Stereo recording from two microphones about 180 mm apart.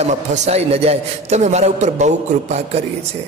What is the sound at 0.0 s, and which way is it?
A man's voice, 40° right (ahead or behind).